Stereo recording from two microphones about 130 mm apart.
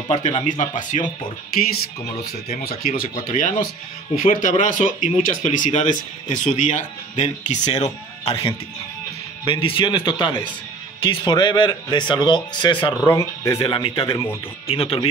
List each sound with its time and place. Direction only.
0.1 s speech: 60° left (ahead or behind); by 1.0 s 75° left (ahead or behind)
2.4 s speech: 75° left (ahead or behind)
4.2 s speech: 90° left; by 8.4 s 60° left (ahead or behind)
9.5 s speech: 40° left (ahead or behind)
12.9 s speech: 25° left (ahead or behind)
13.6 s speech: 45° left (ahead or behind)
14.1 s speech: 20° left (ahead or behind)
14.7 s speech: 45° left (ahead or behind)